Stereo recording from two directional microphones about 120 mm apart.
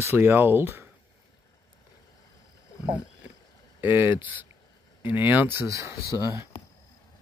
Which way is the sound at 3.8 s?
15° right (ahead or behind).